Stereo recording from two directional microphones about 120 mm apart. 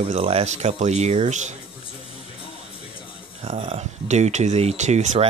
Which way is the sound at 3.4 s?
60° right (ahead or behind).